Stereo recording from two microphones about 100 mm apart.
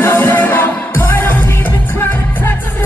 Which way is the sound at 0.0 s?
20° left (ahead or behind).